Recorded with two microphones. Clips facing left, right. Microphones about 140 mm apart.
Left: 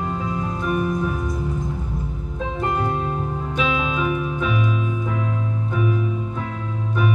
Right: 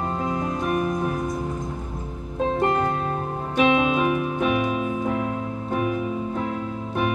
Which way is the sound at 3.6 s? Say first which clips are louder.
Right 4 dB; 55° right (ahead or behind).